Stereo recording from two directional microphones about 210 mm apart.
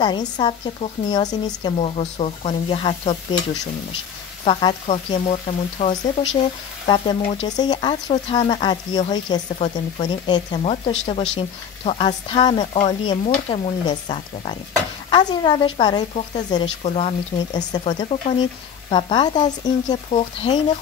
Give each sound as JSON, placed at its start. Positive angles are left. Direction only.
{"t": 0.0, "sound": "speech", "side_deg": 20}
{"t": 4.5, "sound": "speech", "side_deg": 25}